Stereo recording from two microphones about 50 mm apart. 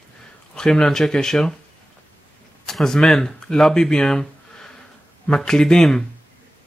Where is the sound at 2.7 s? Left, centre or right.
Centre.